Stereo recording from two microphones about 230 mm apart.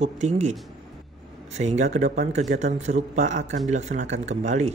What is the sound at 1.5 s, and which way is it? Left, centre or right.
Speech, right.